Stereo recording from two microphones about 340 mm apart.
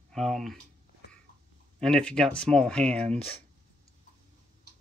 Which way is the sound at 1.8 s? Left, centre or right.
Centre.